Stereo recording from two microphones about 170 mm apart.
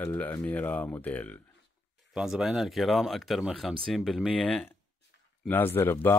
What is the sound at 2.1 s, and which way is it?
Speech, 5° right (ahead or behind).